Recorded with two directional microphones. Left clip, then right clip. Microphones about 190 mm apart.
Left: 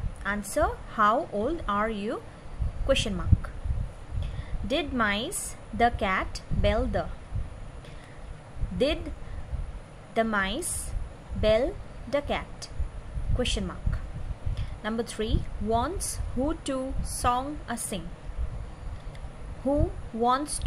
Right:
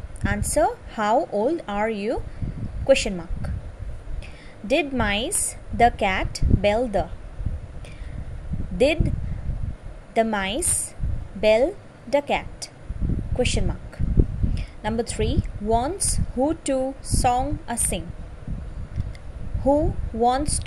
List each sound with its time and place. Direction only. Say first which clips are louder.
0.2 s a woman's voice: right 5 dB; 25° right (ahead or behind)
4.6 s speech: right 5 dB; 25° right (ahead or behind)
8.7 s speech: right 7 dB; 25° right (ahead or behind)
10.1 s a woman's voice: right 4 dB; 25° right (ahead or behind)
19.6 s speech: right 7 dB; 25° right (ahead or behind)